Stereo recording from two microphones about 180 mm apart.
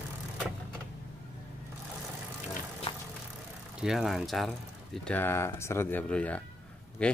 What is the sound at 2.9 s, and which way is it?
Vehicle, 30° left (ahead or behind).